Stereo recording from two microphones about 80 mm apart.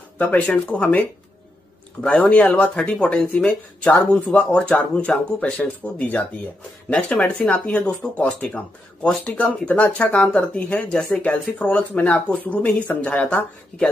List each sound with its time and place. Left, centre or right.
0.7 s speech: centre